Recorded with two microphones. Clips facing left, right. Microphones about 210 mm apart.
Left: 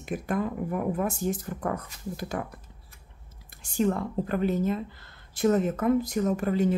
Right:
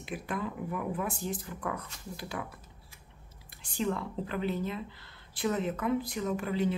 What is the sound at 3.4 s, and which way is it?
Speech, 45° left (ahead or behind).